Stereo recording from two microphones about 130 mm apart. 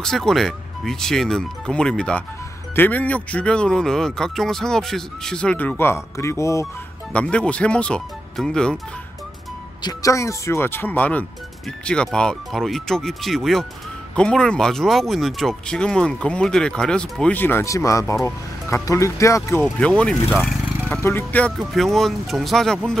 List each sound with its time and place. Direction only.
0.0 s speech: 5° left (ahead or behind); by 6.7 s 20° left (ahead or behind)
7.1 s speech: 10° left (ahead or behind)
9.8 s speech: 25° left (ahead or behind)
19.8 s speech: 5° left (ahead or behind)
20.2 s speech: 5° right (ahead or behind)
21.0 s speech: 15° left (ahead or behind)
21.5 s speech: centre (ahead or behind)